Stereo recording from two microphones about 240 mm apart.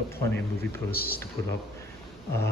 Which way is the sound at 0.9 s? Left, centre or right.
Left.